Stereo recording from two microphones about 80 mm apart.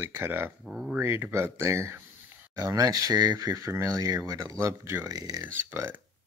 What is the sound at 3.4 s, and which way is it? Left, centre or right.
Speech, right.